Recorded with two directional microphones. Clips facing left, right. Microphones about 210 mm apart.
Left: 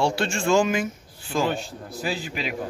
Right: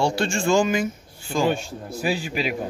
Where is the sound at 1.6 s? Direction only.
15° right (ahead or behind).